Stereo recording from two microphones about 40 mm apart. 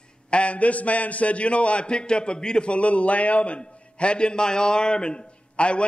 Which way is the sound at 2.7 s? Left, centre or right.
Left.